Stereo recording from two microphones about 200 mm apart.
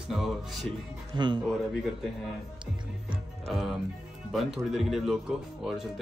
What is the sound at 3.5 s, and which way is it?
A man's voice, centre (ahead or behind).